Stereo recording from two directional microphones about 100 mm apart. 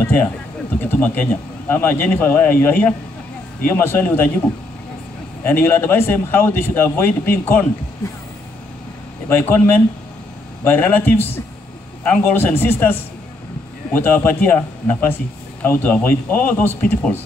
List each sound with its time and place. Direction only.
0.0 s a sound: 20° left (ahead or behind)
0.7 s a man's voice: 20° left (ahead or behind)
5.4 s a man's voice: 20° left (ahead or behind)
9.3 s a man's voice: 20° left (ahead or behind)
13.9 s a man's voice: 20° left (ahead or behind)